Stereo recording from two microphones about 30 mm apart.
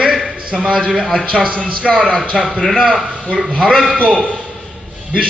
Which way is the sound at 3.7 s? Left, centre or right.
Centre.